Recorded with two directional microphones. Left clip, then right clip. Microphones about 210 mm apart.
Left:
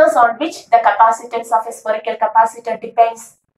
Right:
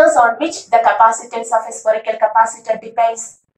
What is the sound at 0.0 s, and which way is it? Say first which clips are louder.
A woman's voice: right 1 dB; 30° left (ahead or behind).